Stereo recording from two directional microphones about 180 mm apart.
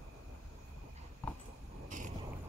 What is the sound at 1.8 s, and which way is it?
Vehicle, 45° right (ahead or behind).